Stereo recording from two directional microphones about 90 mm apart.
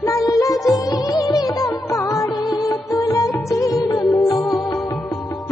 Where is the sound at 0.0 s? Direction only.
40° left (ahead or behind).